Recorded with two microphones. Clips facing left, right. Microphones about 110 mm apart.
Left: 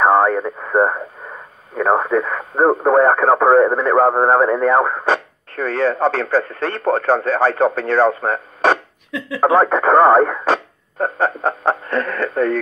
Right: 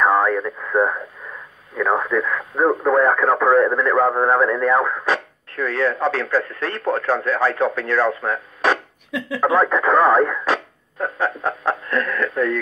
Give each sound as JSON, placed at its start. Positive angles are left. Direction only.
{"t": 0.0, "sound": "speech", "side_deg": 40}